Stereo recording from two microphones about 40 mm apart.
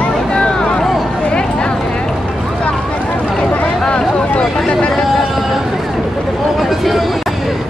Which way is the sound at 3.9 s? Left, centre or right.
Left.